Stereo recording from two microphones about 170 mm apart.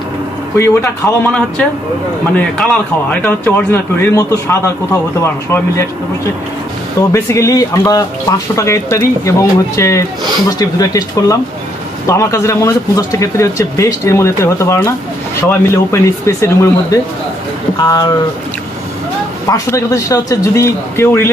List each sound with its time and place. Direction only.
0.6 s speech: 15° left (ahead or behind)
7.0 s speech: 20° left (ahead or behind)
19.5 s speech: 20° left (ahead or behind)